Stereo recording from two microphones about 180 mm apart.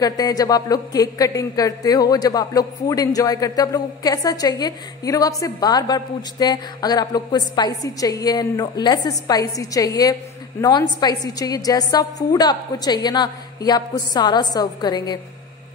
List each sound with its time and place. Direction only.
0.0 s a woman's voice: 20° left (ahead or behind)